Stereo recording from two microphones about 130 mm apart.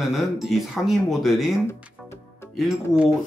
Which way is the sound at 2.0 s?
5° right (ahead or behind).